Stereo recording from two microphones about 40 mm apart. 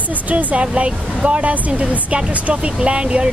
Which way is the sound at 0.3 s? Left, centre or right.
Right.